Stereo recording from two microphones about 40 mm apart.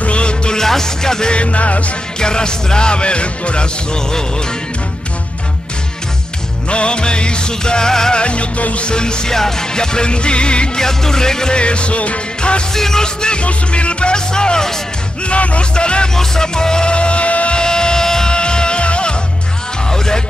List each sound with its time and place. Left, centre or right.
0.0 s music: left
0.6 s music: centre
1.3 s music: left
2.1 s music: centre
6.7 s music: left
8.2 s music: left
10.8 s music: centre
12.7 s music: centre
15.2 s music: left
17.6 s music: centre